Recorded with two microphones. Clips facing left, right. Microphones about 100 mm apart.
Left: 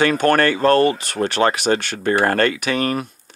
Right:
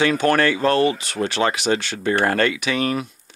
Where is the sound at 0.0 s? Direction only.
45° left (ahead or behind).